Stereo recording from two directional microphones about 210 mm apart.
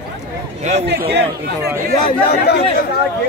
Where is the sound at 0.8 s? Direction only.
55° right (ahead or behind).